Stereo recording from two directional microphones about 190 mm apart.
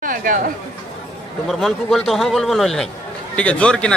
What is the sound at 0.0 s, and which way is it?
Chatter, 45° right (ahead or behind).